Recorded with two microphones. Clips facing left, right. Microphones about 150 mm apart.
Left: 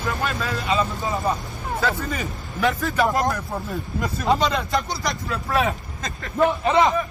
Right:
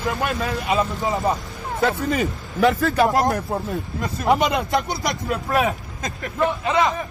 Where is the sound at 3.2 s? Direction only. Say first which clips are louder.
Right 3 dB; 25° right (ahead or behind).